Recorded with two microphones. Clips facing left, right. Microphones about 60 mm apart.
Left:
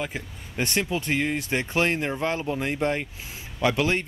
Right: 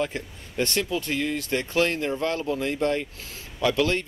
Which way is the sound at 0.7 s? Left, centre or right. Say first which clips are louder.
Left 4 dB; left.